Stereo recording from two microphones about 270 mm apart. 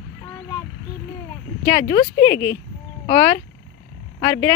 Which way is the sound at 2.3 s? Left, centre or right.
Left.